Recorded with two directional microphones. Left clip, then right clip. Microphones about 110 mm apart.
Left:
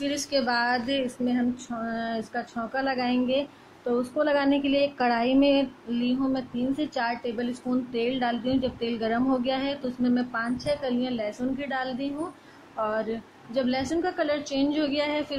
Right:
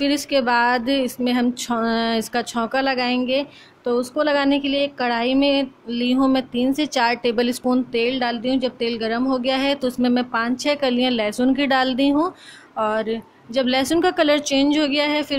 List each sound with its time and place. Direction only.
0.3 s a woman's voice: 45° right (ahead or behind)
2.8 s a woman's voice: 30° right (ahead or behind)
4.6 s a sound: 10° right (ahead or behind)
6.2 s a woman's voice: 40° right (ahead or behind)
7.3 s speech: 65° right (ahead or behind)
7.9 s a woman's voice: 25° right (ahead or behind)
9.5 s a woman's voice: 40° right (ahead or behind); by 12.3 s 55° right (ahead or behind)
12.7 s speech: 40° right (ahead or behind)
13.7 s a woman's voice: 55° right (ahead or behind); by 15.3 s 30° right (ahead or behind)